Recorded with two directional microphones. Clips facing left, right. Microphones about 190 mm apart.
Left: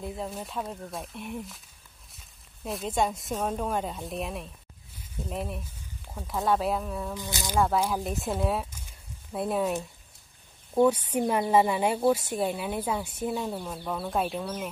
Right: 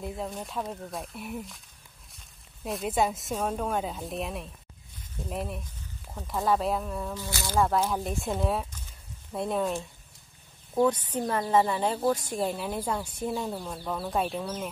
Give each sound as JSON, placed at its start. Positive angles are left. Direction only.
{"t": 0.0, "sound": "speech", "side_deg": 0}
{"t": 7.2, "sound": "speech", "side_deg": 15}
{"t": 7.5, "sound": "speech", "side_deg": 0}
{"t": 8.8, "sound": "a sound", "side_deg": 5}
{"t": 10.7, "sound": "speech", "side_deg": 10}